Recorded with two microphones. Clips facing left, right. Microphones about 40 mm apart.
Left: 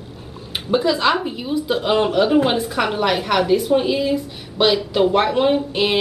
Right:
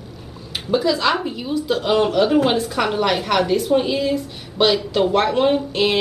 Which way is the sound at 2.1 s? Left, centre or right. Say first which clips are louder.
Even; centre.